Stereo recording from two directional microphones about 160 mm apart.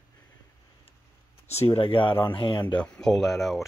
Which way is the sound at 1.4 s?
40° left (ahead or behind).